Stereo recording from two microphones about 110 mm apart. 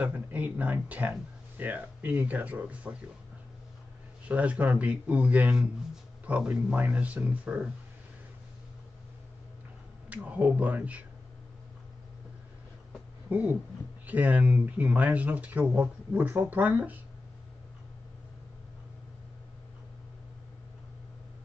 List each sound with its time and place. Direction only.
0.0 s speech: 15° right (ahead or behind)
4.3 s speech: 15° right (ahead or behind)
10.0 s speech: 15° right (ahead or behind)
13.3 s speech: 15° right (ahead or behind)